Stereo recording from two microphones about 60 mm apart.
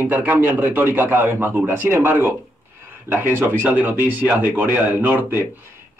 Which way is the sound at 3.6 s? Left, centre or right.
Right.